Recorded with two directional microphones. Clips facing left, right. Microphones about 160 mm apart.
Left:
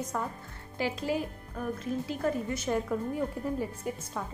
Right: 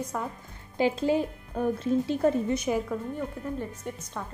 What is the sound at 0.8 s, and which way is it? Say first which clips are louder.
Speech: right 6 dB; 25° right (ahead or behind).